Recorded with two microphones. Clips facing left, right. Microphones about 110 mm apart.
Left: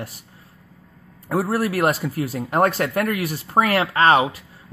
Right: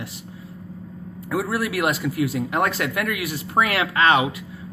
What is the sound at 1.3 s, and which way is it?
Speech, 40° left (ahead or behind).